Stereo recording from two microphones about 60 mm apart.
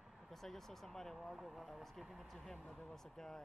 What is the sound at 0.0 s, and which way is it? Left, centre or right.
Speech, centre.